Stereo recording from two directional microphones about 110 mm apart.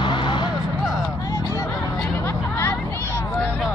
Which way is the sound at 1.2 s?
30° left (ahead or behind).